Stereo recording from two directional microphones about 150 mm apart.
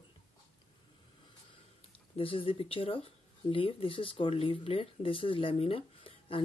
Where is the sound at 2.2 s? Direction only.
35° left (ahead or behind).